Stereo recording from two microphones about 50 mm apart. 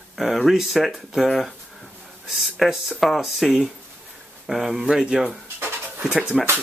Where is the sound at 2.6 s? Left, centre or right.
Centre.